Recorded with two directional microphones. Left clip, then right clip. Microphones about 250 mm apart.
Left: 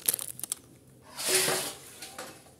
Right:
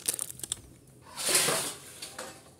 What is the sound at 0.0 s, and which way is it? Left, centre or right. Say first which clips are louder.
Crumpling: left 1 dB; centre.